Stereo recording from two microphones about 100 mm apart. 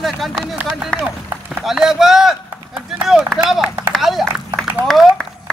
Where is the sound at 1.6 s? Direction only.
Centre (ahead or behind).